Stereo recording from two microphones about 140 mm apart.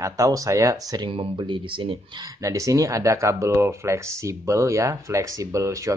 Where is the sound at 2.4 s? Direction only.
25° right (ahead or behind).